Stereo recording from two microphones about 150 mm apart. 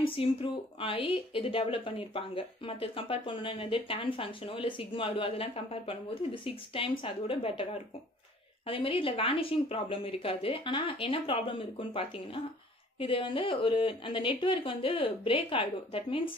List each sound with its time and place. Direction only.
0.1 s a woman's voice: 40° left (ahead or behind)